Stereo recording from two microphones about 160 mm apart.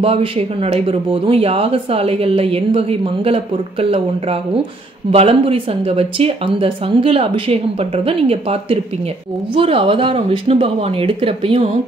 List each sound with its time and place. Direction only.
0.0 s speech: 35° right (ahead or behind)
5.1 s speech: 35° right (ahead or behind)